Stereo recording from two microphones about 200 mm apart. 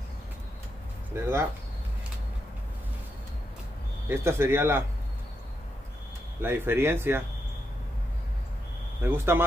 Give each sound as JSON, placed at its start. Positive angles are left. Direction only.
{"t": 1.1, "sound": "speech", "side_deg": -10}
{"t": 4.1, "sound": "speech", "side_deg": -15}
{"t": 6.4, "sound": "speech", "side_deg": -10}
{"t": 9.0, "sound": "speech", "side_deg": -10}